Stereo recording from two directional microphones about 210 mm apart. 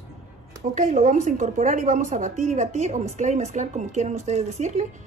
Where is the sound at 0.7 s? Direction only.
35° right (ahead or behind).